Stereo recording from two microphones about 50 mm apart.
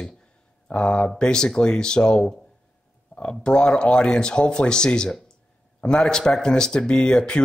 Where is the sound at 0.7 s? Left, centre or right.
Centre.